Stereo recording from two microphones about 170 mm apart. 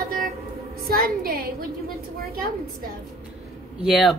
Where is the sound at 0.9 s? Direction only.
60° right (ahead or behind).